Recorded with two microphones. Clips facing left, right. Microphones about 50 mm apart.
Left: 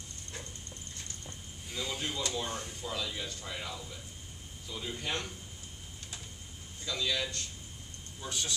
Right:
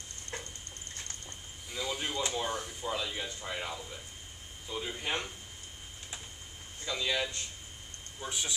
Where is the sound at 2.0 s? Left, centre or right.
Right.